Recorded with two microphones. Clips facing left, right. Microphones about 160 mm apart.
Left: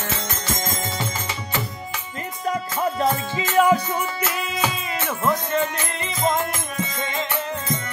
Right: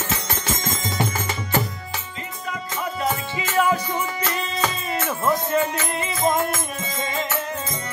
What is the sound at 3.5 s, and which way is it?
Music, 20° left (ahead or behind).